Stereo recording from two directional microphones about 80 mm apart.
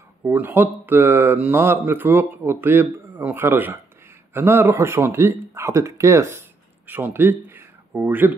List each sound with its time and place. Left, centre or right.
0.3 s speech: right
6.9 s speech: right